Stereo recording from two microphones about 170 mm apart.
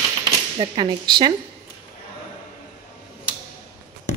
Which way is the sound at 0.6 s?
25° right (ahead or behind).